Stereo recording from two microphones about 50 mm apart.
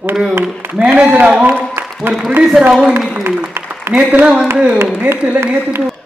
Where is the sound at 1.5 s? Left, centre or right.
Centre.